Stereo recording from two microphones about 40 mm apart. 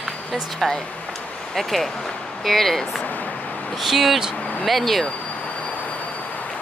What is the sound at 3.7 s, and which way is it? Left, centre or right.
Speech, centre.